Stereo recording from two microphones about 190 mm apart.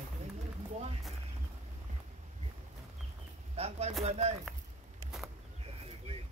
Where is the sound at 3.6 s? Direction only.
35° right (ahead or behind).